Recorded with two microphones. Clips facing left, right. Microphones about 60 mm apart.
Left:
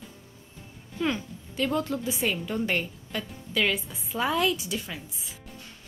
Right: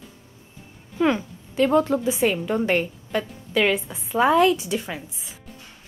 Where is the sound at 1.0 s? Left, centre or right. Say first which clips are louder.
Right 7 dB; right; by 4.8 s centre.